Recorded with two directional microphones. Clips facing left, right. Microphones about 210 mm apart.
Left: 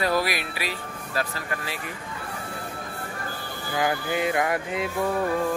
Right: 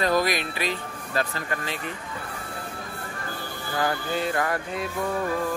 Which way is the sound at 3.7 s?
15° left (ahead or behind).